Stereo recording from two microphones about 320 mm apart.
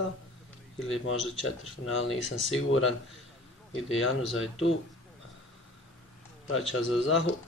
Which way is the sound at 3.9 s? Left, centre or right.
Left.